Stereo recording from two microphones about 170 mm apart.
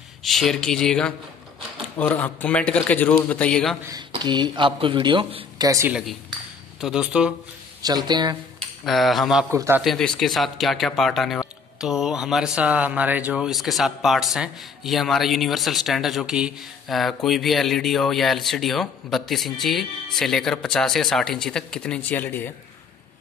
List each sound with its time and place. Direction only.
0.2 s speech: centre (ahead or behind)
4.2 s speech: 25° right (ahead or behind)
6.8 s speech: 5° right (ahead or behind)
7.8 s speech: 25° right (ahead or behind)
8.8 s speech: centre (ahead or behind)
9.5 s a man's voice: 15° right (ahead or behind)
9.8 s speech: centre (ahead or behind)